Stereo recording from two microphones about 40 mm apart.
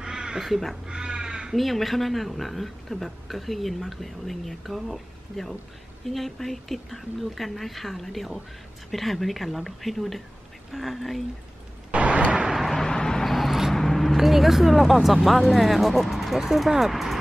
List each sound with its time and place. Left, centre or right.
0.0 s crow: centre
0.5 s speech: centre
0.8 s crow: right
1.5 s speech: centre
11.9 s vehicle: right
12.4 s vehicle: centre
12.7 s vehicle: centre
13.2 s a sound: centre
13.7 s speech: centre